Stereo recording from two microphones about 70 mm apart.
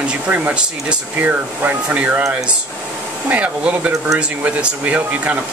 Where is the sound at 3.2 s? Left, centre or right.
Centre.